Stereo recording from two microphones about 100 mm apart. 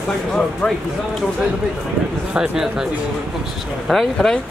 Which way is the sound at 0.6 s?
15° left (ahead or behind).